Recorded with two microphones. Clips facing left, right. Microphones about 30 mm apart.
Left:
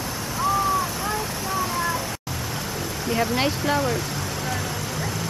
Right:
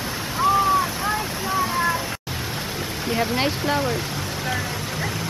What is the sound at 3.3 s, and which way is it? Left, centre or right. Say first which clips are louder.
Speech: even; centre.